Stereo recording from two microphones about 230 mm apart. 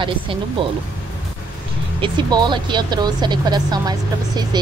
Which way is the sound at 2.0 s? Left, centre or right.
Centre.